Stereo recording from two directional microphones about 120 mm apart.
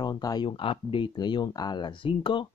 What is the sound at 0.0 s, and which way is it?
Speech, 35° left (ahead or behind).